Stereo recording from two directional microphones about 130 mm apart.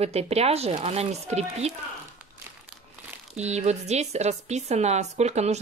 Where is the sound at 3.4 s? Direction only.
60° right (ahead or behind).